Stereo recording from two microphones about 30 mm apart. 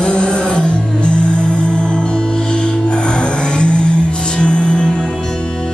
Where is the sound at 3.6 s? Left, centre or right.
Left.